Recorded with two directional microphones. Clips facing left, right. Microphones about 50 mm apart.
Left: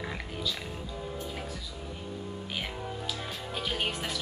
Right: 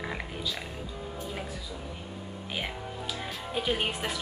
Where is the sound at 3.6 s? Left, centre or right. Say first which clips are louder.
Right 3 dB; centre.